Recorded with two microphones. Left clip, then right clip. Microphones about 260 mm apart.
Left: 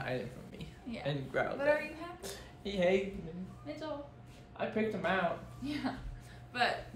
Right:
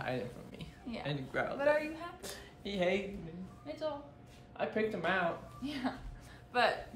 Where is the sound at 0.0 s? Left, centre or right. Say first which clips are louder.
Even; centre.